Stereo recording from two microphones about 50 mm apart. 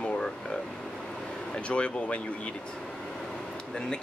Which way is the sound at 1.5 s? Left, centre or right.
Left.